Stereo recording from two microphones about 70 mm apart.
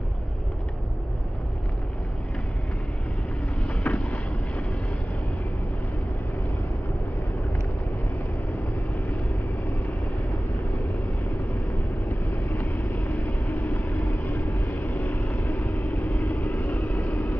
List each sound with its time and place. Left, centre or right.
3.6 s vehicle: centre
12.9 s vehicle: left